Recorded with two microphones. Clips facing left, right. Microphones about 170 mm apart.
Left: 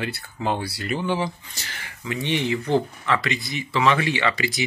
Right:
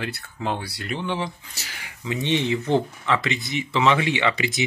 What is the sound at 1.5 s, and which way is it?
Speech, 10° right (ahead or behind).